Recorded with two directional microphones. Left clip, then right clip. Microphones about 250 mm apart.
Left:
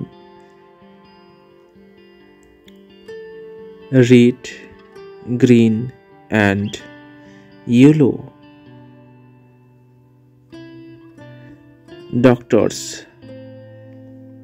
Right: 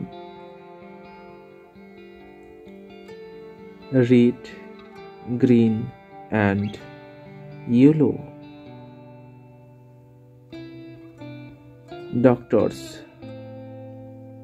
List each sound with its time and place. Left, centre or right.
3.9 s speech: left
12.2 s speech: left